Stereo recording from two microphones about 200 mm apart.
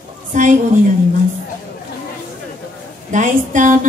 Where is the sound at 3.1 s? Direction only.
40° right (ahead or behind).